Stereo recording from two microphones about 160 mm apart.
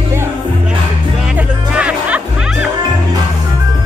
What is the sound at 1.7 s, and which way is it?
Music, 5° right (ahead or behind).